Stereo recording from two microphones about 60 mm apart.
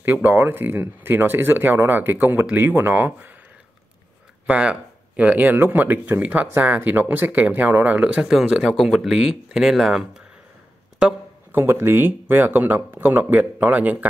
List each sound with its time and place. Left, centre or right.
0.0 s speech: right
4.5 s a sound: right
5.3 s speech: right; by 10.2 s centre
11.5 s speech: right